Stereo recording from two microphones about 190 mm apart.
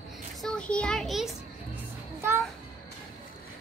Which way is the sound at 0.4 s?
5° left (ahead or behind).